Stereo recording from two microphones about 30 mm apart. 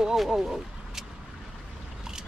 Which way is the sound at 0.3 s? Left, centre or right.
Centre.